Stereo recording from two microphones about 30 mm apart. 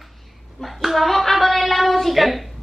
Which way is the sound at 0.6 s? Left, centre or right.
Centre.